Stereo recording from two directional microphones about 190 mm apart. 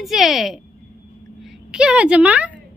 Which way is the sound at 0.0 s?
Centre (ahead or behind).